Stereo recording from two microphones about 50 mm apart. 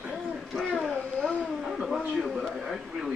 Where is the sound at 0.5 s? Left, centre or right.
Centre.